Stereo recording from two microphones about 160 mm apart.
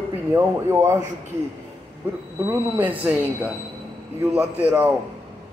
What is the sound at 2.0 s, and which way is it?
Speech, 10° right (ahead or behind).